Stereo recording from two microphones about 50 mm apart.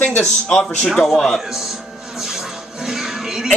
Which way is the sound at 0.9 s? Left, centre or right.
Centre.